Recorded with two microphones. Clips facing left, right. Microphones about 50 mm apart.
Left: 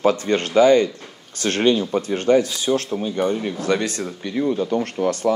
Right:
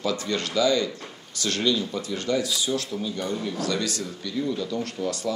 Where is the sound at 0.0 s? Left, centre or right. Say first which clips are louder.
Left 8 dB; left.